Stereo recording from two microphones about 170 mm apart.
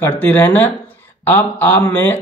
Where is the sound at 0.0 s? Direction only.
10° left (ahead or behind).